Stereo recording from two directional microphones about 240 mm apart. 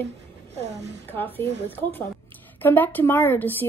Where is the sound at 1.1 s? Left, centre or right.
Centre.